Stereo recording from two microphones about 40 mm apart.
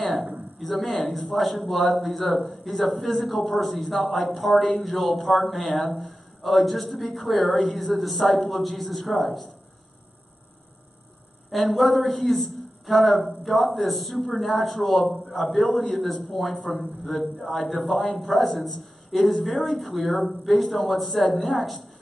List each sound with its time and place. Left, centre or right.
0.6 s a man's voice: centre
11.7 s a man's voice: centre